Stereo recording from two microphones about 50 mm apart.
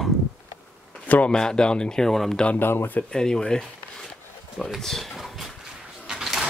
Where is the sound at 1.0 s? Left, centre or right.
Left.